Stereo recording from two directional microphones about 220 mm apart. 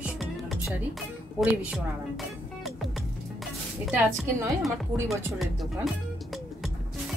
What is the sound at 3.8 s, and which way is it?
A woman's voice, 10° right (ahead or behind).